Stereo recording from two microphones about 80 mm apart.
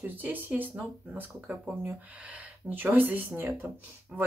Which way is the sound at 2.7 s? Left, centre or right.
Right.